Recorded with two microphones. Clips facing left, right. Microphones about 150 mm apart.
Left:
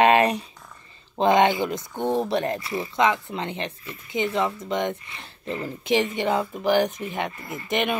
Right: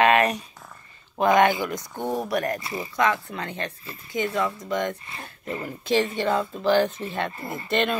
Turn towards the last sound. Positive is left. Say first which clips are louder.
# right 1 dB
turn(degrees=15)  # may be behind; listen again after turning